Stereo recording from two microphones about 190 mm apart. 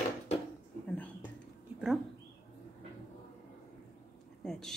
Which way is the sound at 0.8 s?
10° left (ahead or behind).